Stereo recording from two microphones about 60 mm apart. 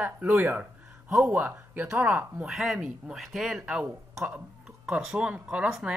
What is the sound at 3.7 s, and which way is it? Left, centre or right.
A man's voice, centre.